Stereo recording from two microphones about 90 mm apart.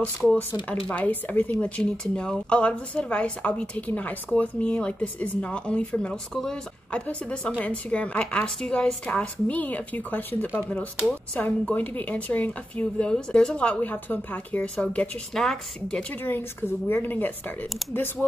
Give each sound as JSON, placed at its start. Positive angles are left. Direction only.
{"t": 0.8, "sound": "a woman's voice", "side_deg": 15}
{"t": 15.3, "sound": "a woman's voice", "side_deg": 5}
{"t": 16.1, "sound": "a woman's voice", "side_deg": 20}